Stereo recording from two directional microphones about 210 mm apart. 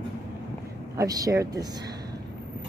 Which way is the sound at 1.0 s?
15° right (ahead or behind).